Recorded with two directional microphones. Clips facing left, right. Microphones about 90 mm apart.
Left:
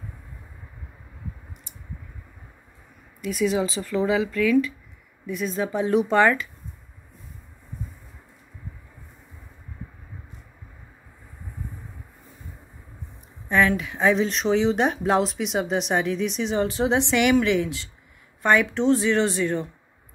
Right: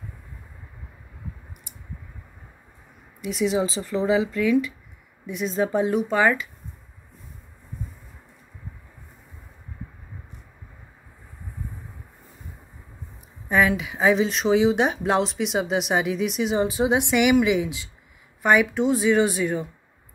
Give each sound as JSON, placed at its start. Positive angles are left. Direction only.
{"t": 3.2, "sound": "speech", "side_deg": -25}
{"t": 5.9, "sound": "speech", "side_deg": -5}
{"t": 13.5, "sound": "speech", "side_deg": -5}